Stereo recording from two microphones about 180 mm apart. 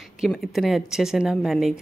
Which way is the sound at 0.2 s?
Centre (ahead or behind).